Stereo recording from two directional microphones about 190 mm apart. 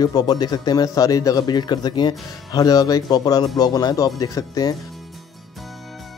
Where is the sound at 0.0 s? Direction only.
20° left (ahead or behind).